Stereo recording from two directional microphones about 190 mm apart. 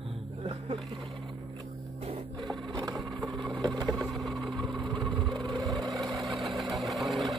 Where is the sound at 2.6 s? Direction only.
25° right (ahead or behind).